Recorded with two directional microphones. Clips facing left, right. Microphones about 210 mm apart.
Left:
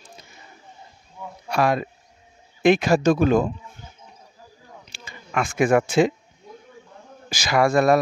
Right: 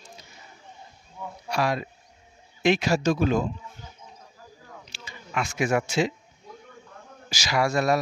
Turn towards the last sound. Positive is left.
turn(degrees=55)  # may be behind; listen again after turning